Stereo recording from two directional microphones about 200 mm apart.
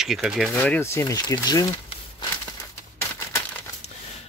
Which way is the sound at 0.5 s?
10° left (ahead or behind).